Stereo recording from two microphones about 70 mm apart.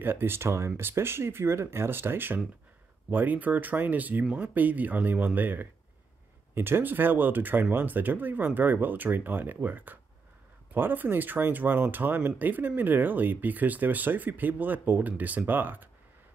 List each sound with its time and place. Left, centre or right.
0.0 s speech: right